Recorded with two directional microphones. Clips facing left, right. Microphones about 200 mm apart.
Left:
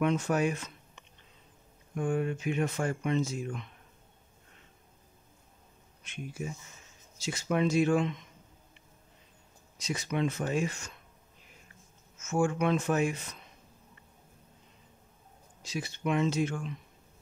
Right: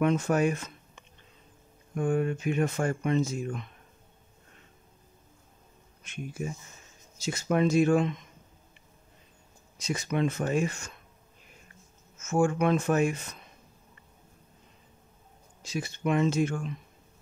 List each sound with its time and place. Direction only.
0.0 s speech: 45° right (ahead or behind)
6.0 s speech: 45° right (ahead or behind)
9.8 s speech: 50° right (ahead or behind)
12.2 s speech: 45° right (ahead or behind)
15.6 s speech: 50° right (ahead or behind)